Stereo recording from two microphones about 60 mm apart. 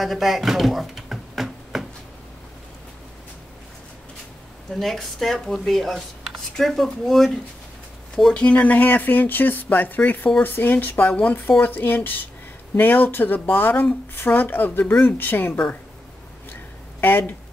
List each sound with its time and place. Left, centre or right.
0.0 s a sound: centre
4.7 s speech: centre
8.3 s speech: centre; by 15.6 s left
17.0 s speech: left